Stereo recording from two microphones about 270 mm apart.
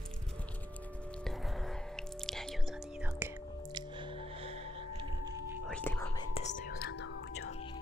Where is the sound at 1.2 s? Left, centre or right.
Centre.